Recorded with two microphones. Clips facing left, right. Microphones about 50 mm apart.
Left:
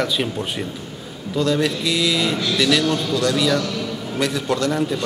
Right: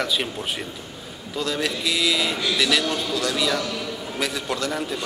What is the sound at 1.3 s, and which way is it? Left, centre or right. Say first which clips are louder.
A man's voice: left 6 dB; centre.